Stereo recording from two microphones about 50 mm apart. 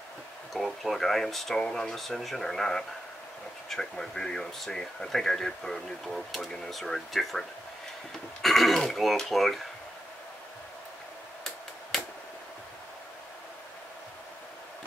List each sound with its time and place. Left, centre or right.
0.5 s speech: centre
2.0 s speech: centre
11.9 s a sound: centre